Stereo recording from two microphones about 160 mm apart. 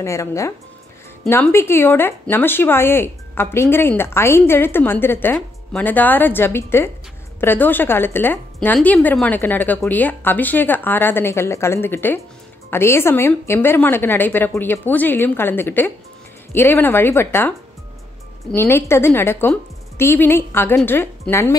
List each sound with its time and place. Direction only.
0.0 s speech: 20° left (ahead or behind)